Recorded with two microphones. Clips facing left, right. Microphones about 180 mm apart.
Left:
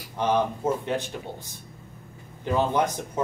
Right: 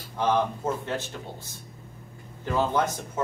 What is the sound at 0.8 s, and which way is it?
Speech, 15° left (ahead or behind).